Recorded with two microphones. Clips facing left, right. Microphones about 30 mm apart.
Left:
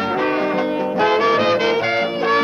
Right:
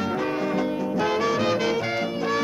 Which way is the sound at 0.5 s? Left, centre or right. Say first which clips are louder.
Left 6 dB; left.